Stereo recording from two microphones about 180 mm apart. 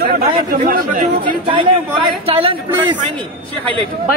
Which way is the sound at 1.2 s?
30° right (ahead or behind).